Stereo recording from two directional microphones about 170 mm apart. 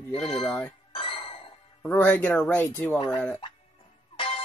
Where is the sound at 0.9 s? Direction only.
30° left (ahead or behind).